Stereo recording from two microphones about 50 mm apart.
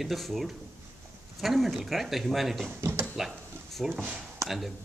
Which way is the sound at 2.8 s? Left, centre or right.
Right.